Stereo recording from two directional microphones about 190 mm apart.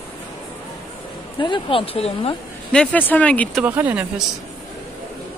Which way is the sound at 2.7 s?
5° left (ahead or behind).